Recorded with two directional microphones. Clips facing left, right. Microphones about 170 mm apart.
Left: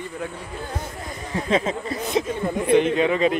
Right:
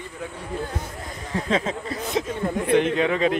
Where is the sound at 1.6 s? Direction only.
15° left (ahead or behind).